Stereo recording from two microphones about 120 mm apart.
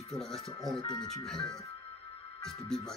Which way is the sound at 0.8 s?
40° left (ahead or behind).